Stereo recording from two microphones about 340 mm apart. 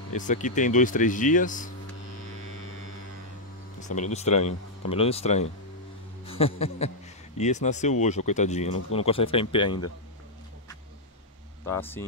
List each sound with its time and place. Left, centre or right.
0.1 s speech: left
3.9 s speech: centre
11.6 s speech: centre